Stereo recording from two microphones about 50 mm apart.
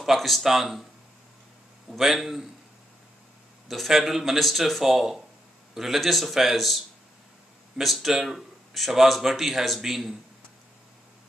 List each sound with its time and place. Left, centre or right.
0.0 s speech: centre
1.9 s speech: centre
3.6 s speech: centre